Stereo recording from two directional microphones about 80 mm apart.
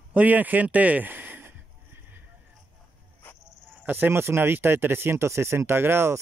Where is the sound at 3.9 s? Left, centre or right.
Right.